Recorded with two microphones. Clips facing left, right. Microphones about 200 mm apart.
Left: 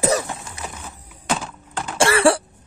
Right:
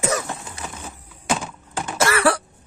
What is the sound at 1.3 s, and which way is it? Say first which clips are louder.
Typing: even; 5° right (ahead or behind).